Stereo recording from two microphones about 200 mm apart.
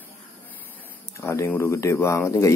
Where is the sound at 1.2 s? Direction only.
15° left (ahead or behind).